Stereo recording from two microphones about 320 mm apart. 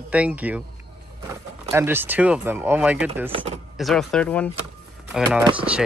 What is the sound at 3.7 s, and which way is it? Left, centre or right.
Speech, centre.